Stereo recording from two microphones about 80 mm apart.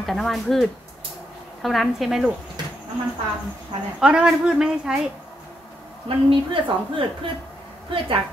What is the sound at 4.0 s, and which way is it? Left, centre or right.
Speech, centre.